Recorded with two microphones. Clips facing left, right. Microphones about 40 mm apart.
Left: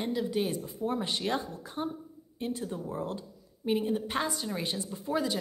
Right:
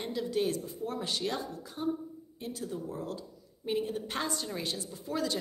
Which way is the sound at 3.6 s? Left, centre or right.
Centre.